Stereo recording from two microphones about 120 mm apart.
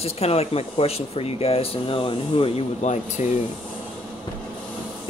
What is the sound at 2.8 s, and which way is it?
Speech, 75° left (ahead or behind).